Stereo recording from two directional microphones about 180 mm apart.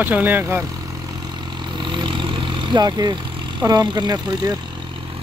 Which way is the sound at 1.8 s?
25° right (ahead or behind).